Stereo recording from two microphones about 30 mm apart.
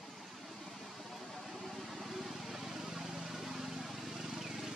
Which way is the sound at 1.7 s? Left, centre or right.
Centre.